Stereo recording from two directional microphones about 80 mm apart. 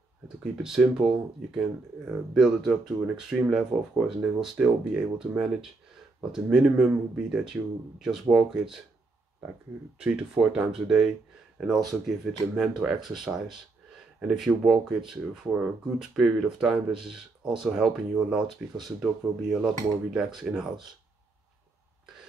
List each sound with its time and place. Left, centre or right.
0.4 s speech: centre
9.9 s speech: centre
15.5 s speech: centre
16.0 s speech: centre